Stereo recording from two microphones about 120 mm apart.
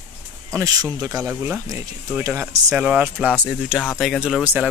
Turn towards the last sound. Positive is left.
turn(degrees=-5)  # may be behind; listen again after turning